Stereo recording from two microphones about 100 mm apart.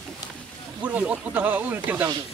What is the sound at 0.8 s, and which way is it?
Speech, 15° right (ahead or behind).